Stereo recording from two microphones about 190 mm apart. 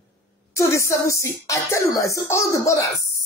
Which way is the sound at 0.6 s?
15° left (ahead or behind).